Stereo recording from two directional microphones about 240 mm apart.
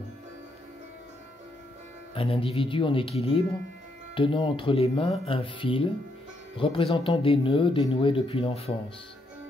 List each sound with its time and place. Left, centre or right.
2.1 s speech: left